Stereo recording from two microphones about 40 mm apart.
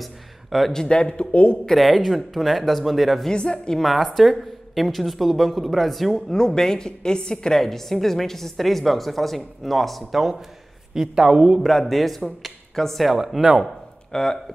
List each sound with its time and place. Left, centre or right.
0.0 s a sound: centre
0.8 s a woman's voice: left
1.3 s speech: left
1.7 s a woman's voice: centre
3.3 s a woman's voice: left
3.8 s a woman's voice: centre
6.3 s a woman's voice: centre
7.5 s a woman's voice: centre
11.0 s a woman's voice: centre
11.6 s a woman's voice: centre
13.4 s a woman's voice: centre
14.1 s speech: centre